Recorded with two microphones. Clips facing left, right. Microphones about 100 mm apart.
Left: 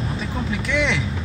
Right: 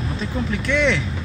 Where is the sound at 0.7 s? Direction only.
15° left (ahead or behind).